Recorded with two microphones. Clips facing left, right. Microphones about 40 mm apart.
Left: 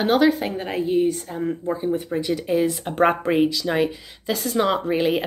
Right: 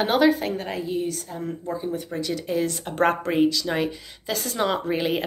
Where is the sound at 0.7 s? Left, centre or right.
Left.